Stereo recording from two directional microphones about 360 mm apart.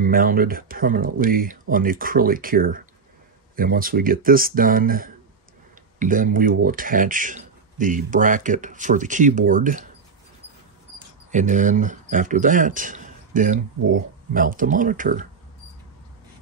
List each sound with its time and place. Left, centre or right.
0.0 s speech: right
11.3 s speech: right